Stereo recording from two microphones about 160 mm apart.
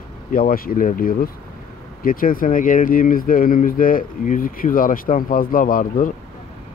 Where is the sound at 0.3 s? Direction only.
60° left (ahead or behind).